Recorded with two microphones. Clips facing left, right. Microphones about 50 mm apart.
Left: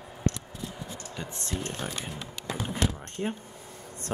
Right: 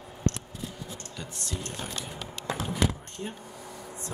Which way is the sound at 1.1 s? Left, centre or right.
Left.